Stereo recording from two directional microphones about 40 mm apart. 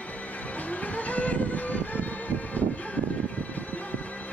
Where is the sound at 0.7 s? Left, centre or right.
Left.